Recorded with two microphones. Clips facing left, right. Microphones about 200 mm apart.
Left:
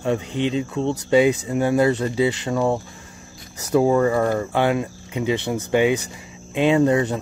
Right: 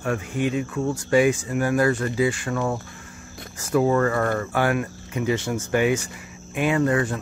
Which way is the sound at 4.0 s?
15° left (ahead or behind).